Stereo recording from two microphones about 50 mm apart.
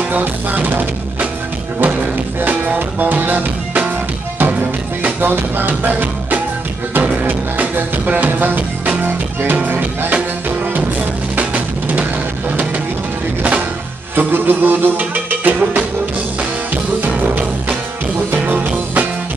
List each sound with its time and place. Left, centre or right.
0.1 s music: right
2.4 s music: right
11.3 s drum: right
13.4 s music: right
14.1 s music: right
18.4 s music: right